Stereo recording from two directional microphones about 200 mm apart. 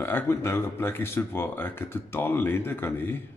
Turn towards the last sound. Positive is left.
turn(degrees=10)  # may be behind; listen again after turning